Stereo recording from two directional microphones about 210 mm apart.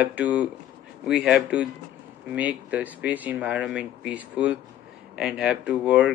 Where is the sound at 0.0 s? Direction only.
5° right (ahead or behind).